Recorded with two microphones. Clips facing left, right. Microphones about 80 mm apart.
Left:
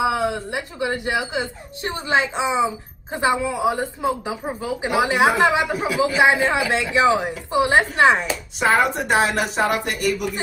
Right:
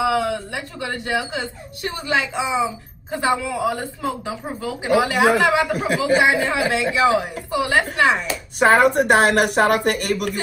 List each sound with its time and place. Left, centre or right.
0.0 s a woman's voice: left
8.5 s a woman's voice: right